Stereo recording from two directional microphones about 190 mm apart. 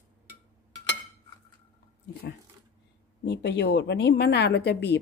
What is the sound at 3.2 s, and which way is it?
A woman's voice, 65° left (ahead or behind).